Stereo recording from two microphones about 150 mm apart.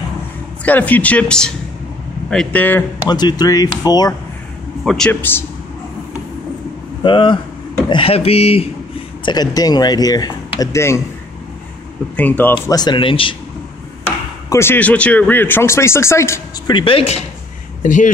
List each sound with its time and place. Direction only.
0.7 s speech: 10° left (ahead or behind)
3.1 s speech: 30° left (ahead or behind)
4.8 s a man's voice: 5° left (ahead or behind)
7.0 s speech: 35° left (ahead or behind)
9.2 s speech: 30° left (ahead or behind)
12.2 s speech: 10° left (ahead or behind)
12.7 s speech: 30° left (ahead or behind)
14.5 s speech: 15° left (ahead or behind)
16.7 s speech: 35° left (ahead or behind)
17.8 s speech: 60° left (ahead or behind)